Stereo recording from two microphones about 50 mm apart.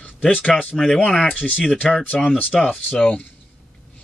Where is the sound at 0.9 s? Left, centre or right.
Centre.